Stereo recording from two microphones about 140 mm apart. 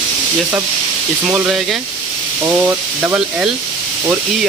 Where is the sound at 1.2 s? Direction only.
5° right (ahead or behind).